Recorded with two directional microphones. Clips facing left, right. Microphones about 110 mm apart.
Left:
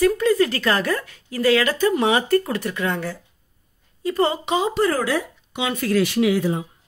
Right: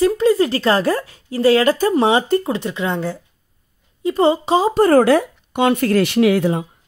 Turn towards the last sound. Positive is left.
turn(degrees=-65)  # may be behind; listen again after turning